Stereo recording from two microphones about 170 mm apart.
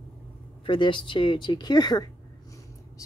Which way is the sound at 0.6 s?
30° left (ahead or behind).